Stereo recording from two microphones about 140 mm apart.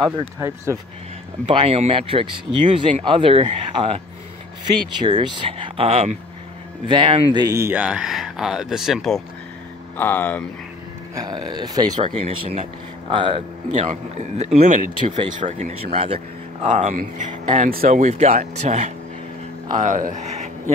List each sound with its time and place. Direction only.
1.4 s speech: 45° right (ahead or behind)
5.0 s speech: 35° right (ahead or behind)
7.3 s speech: 20° right (ahead or behind)
7.8 s speech: 5° right (ahead or behind)
9.9 s speech: 15° left (ahead or behind)
11.2 s speech: 30° right (ahead or behind)
12.2 s speech: 45° right (ahead or behind)
13.1 s speech: 35° right (ahead or behind)
13.7 s speech: 55° right (ahead or behind)
16.6 s speech: 60° right (ahead or behind)
19.8 s speech: 70° right (ahead or behind)